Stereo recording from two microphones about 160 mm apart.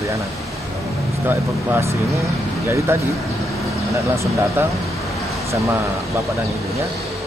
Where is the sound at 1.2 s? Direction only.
15° right (ahead or behind).